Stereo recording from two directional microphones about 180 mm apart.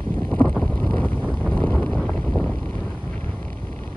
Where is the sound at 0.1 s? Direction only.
10° left (ahead or behind).